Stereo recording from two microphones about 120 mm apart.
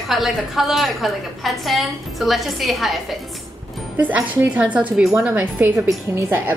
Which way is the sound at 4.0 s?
15° right (ahead or behind).